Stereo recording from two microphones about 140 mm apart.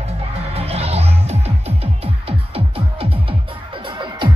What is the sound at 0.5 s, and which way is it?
Music, 45° right (ahead or behind).